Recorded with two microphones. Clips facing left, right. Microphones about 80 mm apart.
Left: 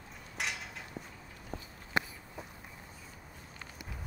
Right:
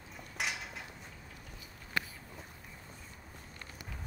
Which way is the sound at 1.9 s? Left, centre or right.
Left.